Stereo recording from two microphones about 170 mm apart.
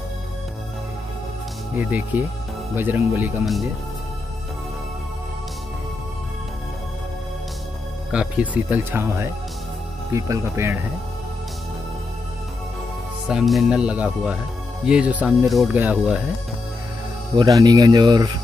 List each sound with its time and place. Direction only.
1.8 s speech: 10° right (ahead or behind)
8.1 s speech: 5° right (ahead or behind)
13.3 s speech: centre (ahead or behind)
17.4 s speech: 20° right (ahead or behind)